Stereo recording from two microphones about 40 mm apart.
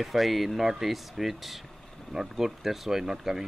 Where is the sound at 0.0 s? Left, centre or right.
Centre.